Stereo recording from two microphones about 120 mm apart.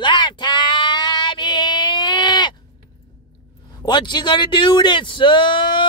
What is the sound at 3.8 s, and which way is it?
Speech, 40° left (ahead or behind).